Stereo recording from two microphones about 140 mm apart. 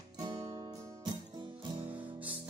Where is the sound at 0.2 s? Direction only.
30° right (ahead or behind).